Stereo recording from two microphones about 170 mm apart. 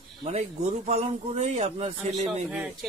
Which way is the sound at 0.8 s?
40° right (ahead or behind).